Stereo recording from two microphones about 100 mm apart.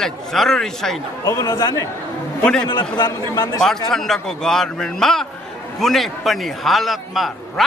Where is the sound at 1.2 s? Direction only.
35° left (ahead or behind).